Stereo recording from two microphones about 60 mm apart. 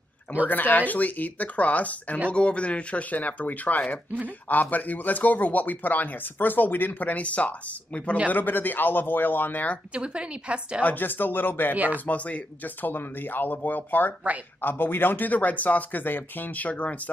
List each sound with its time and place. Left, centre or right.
0.5 s speech: left
9.9 s a woman's voice: centre
10.8 s speech: left
11.7 s speech: right
12.1 s speech: left